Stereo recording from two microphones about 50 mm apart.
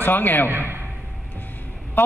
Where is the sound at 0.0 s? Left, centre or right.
Left.